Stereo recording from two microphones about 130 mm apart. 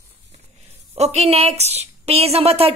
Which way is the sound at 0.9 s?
50° right (ahead or behind).